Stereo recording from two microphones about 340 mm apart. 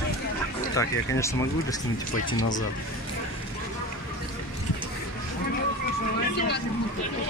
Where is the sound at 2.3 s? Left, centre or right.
Left.